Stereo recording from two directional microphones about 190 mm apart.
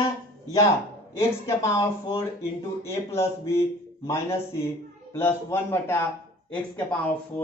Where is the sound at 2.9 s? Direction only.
15° left (ahead or behind).